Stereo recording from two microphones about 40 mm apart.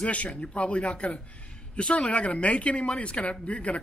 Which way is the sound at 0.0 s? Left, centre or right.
Left.